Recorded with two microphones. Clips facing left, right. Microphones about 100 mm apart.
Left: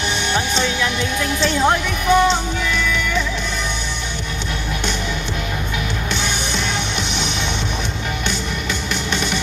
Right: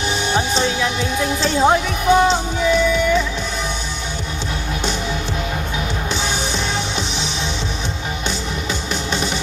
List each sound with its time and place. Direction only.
0.3 s music: 35° right (ahead or behind)
0.8 s speech: 35° right (ahead or behind)
2.7 s music: 35° right (ahead or behind)
9.1 s music: 35° right (ahead or behind)